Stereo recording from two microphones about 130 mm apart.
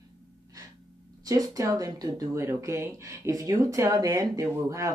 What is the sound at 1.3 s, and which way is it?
Speech, 25° right (ahead or behind).